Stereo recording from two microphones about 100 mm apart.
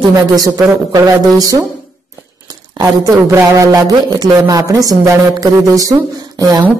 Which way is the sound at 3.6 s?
40° right (ahead or behind).